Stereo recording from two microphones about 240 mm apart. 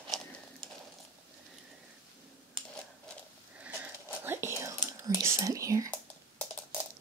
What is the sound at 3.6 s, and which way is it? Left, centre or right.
Whispering, centre.